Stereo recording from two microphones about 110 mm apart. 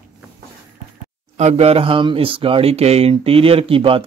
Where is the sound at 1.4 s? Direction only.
70° right (ahead or behind).